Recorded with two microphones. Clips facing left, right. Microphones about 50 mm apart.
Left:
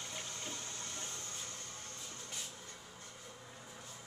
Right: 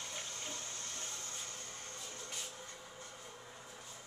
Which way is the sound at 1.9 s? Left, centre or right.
Centre.